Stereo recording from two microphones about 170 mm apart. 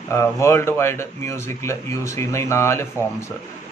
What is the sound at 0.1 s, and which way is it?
Speech, 15° left (ahead or behind).